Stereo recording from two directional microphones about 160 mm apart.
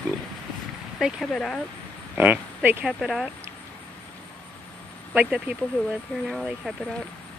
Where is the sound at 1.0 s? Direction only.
Centre (ahead or behind).